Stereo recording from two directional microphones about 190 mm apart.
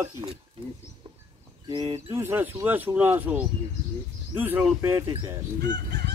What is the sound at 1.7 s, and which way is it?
Speech, 25° right (ahead or behind).